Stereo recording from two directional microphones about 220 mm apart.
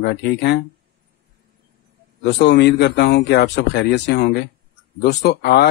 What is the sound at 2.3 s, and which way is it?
Speech, 50° left (ahead or behind).